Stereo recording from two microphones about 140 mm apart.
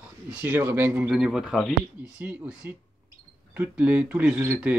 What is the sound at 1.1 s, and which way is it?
A man's voice, 5° right (ahead or behind).